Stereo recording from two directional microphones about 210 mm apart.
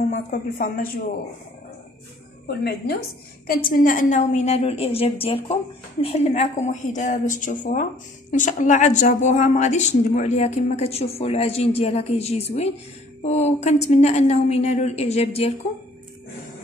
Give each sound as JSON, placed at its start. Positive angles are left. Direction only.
{"t": 0.1, "sound": "a woman's voice", "side_deg": 40}
{"t": 2.4, "sound": "a woman's voice", "side_deg": 50}